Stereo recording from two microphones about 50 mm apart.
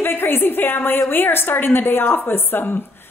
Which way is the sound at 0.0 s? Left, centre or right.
Left.